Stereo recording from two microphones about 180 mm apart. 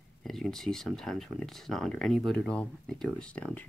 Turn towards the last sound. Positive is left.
turn(degrees=5)  # may be behind; listen again after turning